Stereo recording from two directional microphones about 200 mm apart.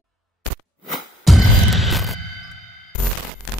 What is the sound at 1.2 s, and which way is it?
Music, centre (ahead or behind).